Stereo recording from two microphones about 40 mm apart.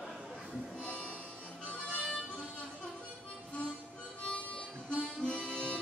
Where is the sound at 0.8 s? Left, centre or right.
Left.